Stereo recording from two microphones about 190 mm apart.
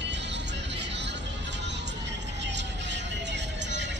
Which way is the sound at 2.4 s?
65° right (ahead or behind).